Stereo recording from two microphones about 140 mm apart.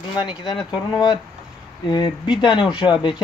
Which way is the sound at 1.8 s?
30° left (ahead or behind).